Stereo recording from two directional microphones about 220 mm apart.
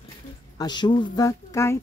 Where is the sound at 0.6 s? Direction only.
20° left (ahead or behind).